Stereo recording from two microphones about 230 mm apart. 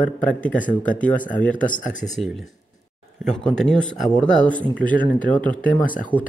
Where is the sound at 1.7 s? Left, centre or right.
Left.